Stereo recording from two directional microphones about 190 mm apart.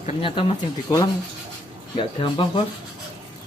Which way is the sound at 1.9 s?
25° left (ahead or behind).